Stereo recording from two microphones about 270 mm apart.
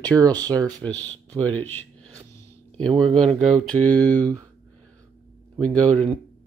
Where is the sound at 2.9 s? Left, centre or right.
Centre.